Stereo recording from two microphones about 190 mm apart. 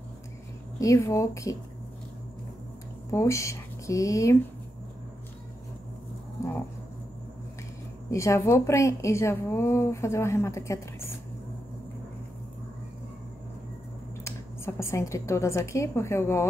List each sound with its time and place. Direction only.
0.7 s a woman's voice: 15° left (ahead or behind)
3.1 s speech: 15° left (ahead or behind)
8.1 s a woman's voice: 15° left (ahead or behind)
14.2 s a woman's voice: 15° left (ahead or behind)